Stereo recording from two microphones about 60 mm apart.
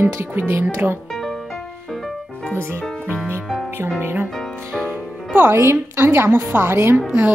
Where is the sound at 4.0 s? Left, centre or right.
Right.